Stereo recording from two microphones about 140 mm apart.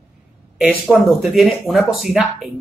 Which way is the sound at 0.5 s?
5° right (ahead or behind).